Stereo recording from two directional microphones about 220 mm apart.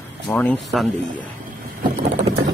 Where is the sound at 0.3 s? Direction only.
5° left (ahead or behind).